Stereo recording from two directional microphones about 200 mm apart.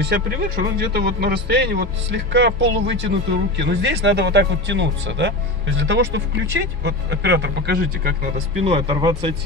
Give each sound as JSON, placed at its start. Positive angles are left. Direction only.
{"t": 0.0, "sound": "speech", "side_deg": -55}
{"t": 8.6, "sound": "speech", "side_deg": -25}